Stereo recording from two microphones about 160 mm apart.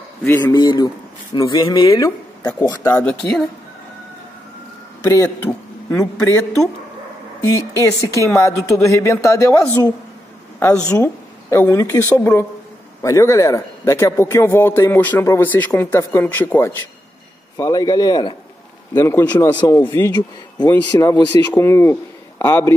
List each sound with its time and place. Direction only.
0.4 s speech: 25° left (ahead or behind)
3.0 s speech: 5° left (ahead or behind)
5.0 s speech: 20° left (ahead or behind)
7.8 s speech: 20° left (ahead or behind)
10.9 s a man's voice: 15° left (ahead or behind)
20.2 s a man's voice: 25° left (ahead or behind)